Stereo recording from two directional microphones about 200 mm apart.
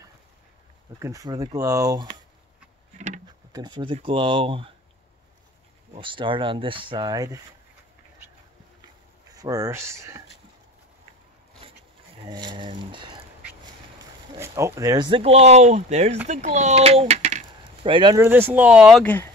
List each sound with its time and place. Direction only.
0.9 s speech: 15° right (ahead or behind)
3.5 s speech: 20° right (ahead or behind)
5.9 s speech: 25° right (ahead or behind)
9.3 s speech: 15° right (ahead or behind)
12.3 s speech: 20° right (ahead or behind)
14.3 s speech: 20° right (ahead or behind)
19.0 s speech: 10° left (ahead or behind)